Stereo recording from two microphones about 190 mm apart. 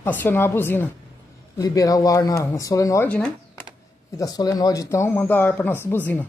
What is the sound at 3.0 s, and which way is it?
Speech, 5° left (ahead or behind).